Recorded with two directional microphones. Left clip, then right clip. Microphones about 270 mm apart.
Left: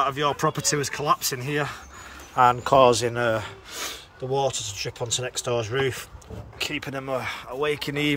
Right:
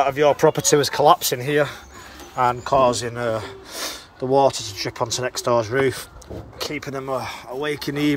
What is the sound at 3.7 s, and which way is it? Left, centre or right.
Speech, centre.